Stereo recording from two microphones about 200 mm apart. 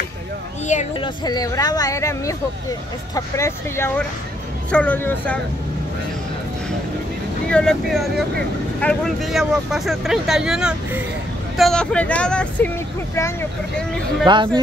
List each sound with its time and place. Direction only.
0.7 s speech: 35° left (ahead or behind)
1.0 s speech: 20° left (ahead or behind)
7.4 s speech: 5° left (ahead or behind)
14.2 s speech: 25° right (ahead or behind)